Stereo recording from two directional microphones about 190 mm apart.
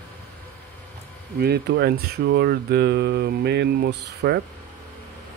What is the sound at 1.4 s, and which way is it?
Speech, 60° right (ahead or behind).